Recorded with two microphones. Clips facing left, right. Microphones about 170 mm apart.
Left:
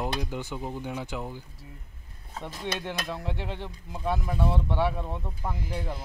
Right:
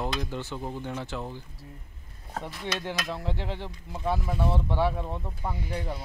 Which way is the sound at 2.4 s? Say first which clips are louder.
Left 2 dB; 45° left (ahead or behind).